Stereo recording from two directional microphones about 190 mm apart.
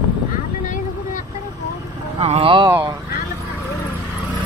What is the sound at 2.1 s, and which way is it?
Speech, 30° right (ahead or behind).